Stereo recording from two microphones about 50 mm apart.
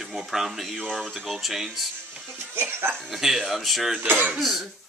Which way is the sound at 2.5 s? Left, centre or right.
Right.